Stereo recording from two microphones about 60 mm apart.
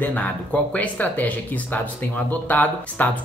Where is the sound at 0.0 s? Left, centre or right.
Left.